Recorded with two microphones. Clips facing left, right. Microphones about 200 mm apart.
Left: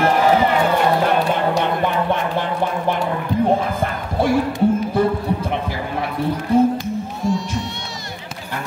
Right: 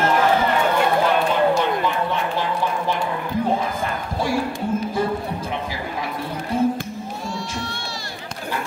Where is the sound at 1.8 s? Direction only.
55° left (ahead or behind).